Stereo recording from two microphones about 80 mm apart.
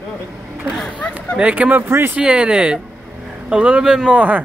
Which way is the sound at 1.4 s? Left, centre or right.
Centre.